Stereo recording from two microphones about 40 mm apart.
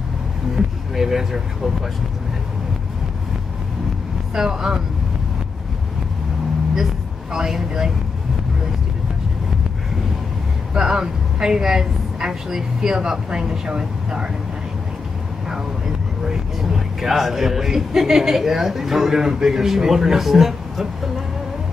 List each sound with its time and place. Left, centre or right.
0.6 s speech: centre
4.4 s a man's voice: centre
7.3 s a man's voice: centre
10.7 s a man's voice: centre
16.3 s a man's voice: centre